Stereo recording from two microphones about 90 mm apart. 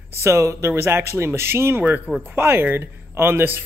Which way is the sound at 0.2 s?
35° right (ahead or behind).